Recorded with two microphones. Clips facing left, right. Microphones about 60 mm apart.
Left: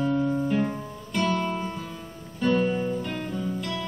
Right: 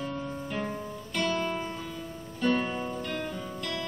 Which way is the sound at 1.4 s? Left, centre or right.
Centre.